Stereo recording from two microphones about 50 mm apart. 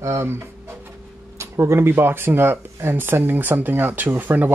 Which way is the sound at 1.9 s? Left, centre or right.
Right.